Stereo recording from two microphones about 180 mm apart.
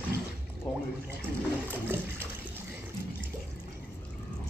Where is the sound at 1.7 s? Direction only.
10° right (ahead or behind).